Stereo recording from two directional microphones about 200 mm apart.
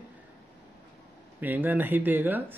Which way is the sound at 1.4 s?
10° right (ahead or behind).